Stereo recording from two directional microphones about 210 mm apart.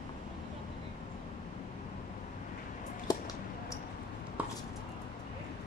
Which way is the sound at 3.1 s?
15° left (ahead or behind).